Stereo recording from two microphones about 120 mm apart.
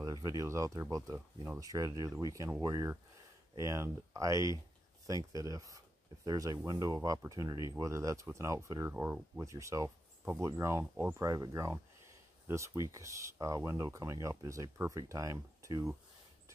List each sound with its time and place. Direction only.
0.0 s speech: 30° right (ahead or behind)
1.6 s speech: 30° right (ahead or behind)
8.9 s speech: 15° right (ahead or behind)
9.4 s speech: 25° right (ahead or behind)
11.2 s speech: 30° right (ahead or behind)